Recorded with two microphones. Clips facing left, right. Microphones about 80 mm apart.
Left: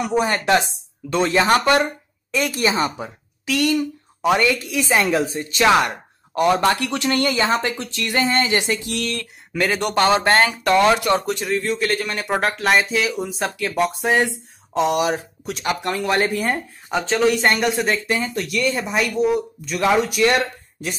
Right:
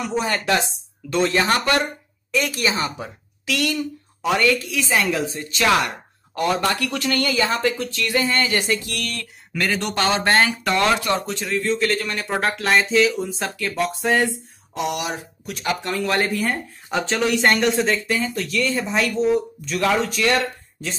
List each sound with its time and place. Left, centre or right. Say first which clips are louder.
0.3 s speech: left 3 dB; left
10.3 s speech: left 3 dB; centre
12.4 s speech: left 1 dB; centre
14.9 s speech: left 6 dB; left
15.9 s speech: left 2 dB; centre
16.9 s speech: left 3 dB; centre
17.8 s speech: even; centre